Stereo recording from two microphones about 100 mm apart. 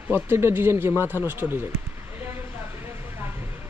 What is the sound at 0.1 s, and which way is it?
Speech, 25° right (ahead or behind).